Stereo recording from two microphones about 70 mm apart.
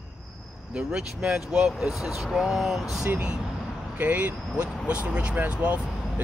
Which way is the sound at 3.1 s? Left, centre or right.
Centre.